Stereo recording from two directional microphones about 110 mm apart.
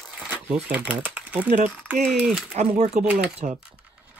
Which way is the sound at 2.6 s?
90° right.